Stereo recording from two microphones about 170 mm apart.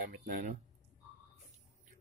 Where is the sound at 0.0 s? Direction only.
50° right (ahead or behind).